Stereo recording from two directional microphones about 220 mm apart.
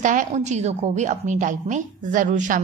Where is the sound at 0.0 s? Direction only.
35° right (ahead or behind).